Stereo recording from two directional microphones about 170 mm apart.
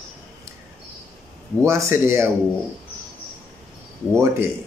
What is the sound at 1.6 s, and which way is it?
Speech, 15° right (ahead or behind).